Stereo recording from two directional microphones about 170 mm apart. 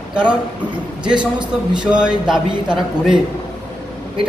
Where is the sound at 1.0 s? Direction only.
25° right (ahead or behind).